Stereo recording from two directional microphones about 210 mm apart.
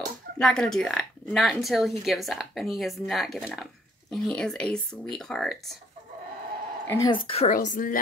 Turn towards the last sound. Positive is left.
turn(degrees=40)  # may be behind; listen again after turning